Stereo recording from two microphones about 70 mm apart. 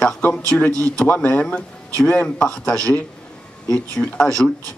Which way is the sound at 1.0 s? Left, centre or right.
Left.